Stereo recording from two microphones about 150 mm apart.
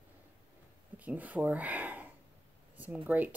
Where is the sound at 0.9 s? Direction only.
10° right (ahead or behind).